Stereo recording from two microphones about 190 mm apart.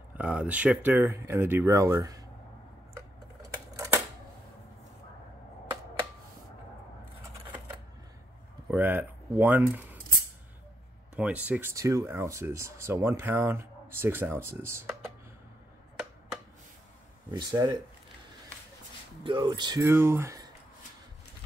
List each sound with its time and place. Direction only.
0.1 s speech: 5° right (ahead or behind)
3.7 s typewriter: 15° right (ahead or behind)
8.6 s speech: 10° right (ahead or behind)
11.1 s speech: 5° right (ahead or behind)
17.3 s speech: 20° right (ahead or behind)
19.2 s speech: 25° right (ahead or behind)